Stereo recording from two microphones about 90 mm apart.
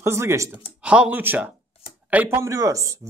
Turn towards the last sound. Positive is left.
turn(degrees=-35)  # may be behind; listen again after turning